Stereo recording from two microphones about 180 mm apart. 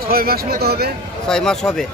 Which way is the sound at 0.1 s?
55° right (ahead or behind).